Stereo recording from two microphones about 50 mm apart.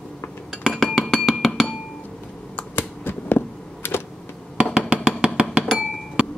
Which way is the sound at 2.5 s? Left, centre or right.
Left.